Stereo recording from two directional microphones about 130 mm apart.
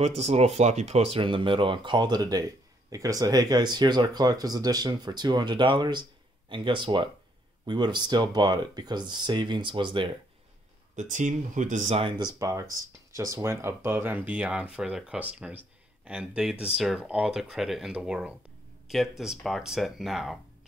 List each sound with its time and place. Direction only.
0.0 s speech: 50° right (ahead or behind)
11.0 s speech: 70° right (ahead or behind)
11.9 s speech: 40° right (ahead or behind)
12.4 s speech: 25° right (ahead or behind); by 20.3 s centre (ahead or behind)